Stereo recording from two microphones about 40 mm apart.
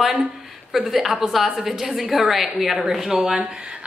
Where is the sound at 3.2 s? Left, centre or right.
Right.